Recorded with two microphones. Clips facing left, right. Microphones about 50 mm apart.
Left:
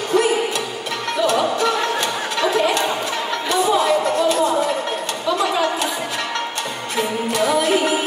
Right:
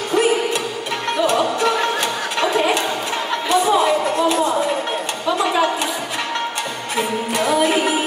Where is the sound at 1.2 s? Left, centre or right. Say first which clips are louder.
Even; centre.